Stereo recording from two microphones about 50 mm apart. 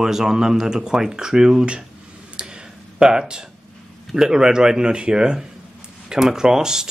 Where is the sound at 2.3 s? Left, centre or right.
Centre.